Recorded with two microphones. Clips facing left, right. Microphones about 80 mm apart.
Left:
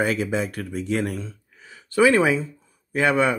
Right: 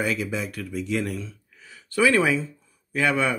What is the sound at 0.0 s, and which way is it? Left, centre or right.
Speech, left.